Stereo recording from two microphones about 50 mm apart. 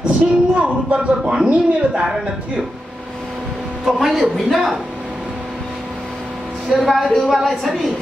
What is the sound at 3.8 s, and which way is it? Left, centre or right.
Speech, centre.